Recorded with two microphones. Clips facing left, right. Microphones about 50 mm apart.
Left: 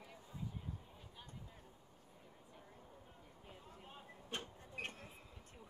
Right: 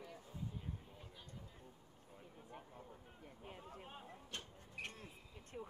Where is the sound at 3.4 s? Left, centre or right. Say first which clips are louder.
Right 5 dB; right.